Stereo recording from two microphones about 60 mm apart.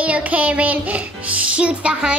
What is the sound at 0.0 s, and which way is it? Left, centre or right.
Music, right.